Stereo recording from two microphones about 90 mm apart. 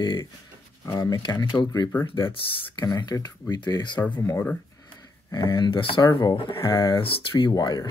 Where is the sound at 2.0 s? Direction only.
70° left (ahead or behind).